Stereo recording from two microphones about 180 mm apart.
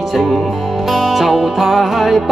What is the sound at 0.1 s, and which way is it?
Music, centre (ahead or behind).